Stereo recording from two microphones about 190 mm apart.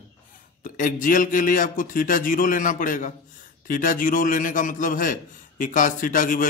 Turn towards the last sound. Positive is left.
turn(degrees=45)  # may be behind; listen again after turning